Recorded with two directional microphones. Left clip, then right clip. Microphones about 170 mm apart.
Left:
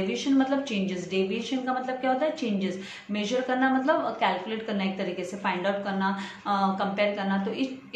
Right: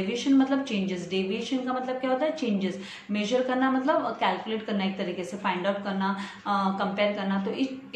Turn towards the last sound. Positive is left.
turn(degrees=5)  # may be behind; listen again after turning